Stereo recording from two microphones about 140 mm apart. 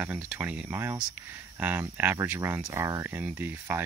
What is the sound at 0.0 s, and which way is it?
Speech, 10° right (ahead or behind).